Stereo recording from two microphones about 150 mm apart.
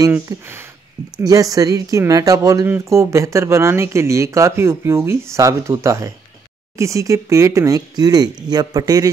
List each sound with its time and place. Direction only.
0.1 s speech: 15° right (ahead or behind)